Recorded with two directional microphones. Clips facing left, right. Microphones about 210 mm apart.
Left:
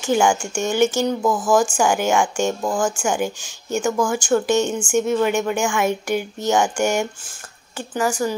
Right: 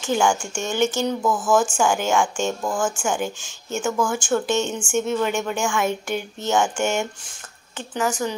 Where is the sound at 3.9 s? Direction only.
15° left (ahead or behind).